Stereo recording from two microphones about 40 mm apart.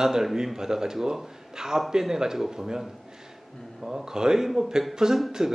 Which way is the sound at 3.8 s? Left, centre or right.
Centre.